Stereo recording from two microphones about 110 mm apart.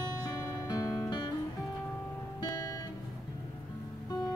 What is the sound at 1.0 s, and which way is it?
Music, 45° left (ahead or behind).